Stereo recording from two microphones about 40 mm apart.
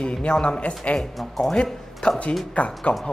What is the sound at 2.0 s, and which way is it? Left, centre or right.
Speech, left.